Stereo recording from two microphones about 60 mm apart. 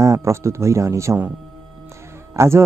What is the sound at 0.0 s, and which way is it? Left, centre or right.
Speech, right.